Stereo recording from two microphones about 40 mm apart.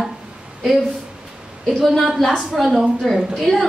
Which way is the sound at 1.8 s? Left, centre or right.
Centre.